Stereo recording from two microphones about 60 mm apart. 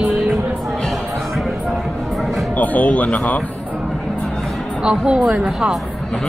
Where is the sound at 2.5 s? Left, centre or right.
Left.